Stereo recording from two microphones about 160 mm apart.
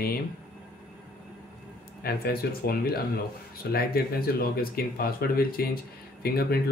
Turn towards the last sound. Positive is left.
turn(degrees=75)  # may be behind; listen again after turning